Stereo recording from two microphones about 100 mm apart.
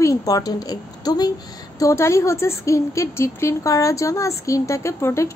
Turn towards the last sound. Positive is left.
turn(degrees=25)  # may be behind; listen again after turning